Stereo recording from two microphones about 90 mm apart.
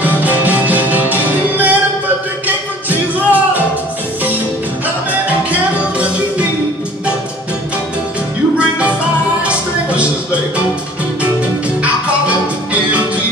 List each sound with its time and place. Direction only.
0.0 s music: 20° right (ahead or behind)
5.5 s music: 15° right (ahead or behind)
8.5 s music: 10° right (ahead or behind)
11.8 s music: 15° right (ahead or behind)